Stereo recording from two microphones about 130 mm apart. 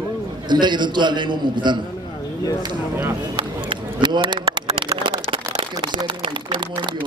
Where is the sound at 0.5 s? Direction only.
35° right (ahead or behind).